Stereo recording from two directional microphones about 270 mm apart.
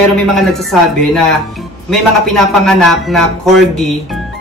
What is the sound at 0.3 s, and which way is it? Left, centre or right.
Speech, centre.